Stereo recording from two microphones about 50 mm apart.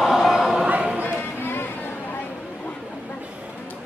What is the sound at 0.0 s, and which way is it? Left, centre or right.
Choir, centre.